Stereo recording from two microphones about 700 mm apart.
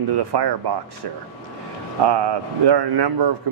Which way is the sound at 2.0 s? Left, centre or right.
Right.